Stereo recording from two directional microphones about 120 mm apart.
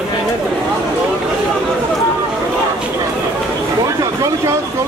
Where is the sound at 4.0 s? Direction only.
30° right (ahead or behind).